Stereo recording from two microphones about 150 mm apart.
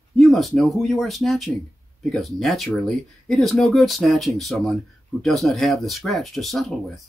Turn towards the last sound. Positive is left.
turn(degrees=0)  # may be behind; listen again after turning